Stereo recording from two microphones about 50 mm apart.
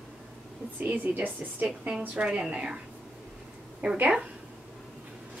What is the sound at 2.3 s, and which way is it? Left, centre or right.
Speech, centre.